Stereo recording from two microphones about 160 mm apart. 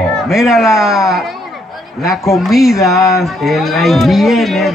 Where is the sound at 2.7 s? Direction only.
20° left (ahead or behind).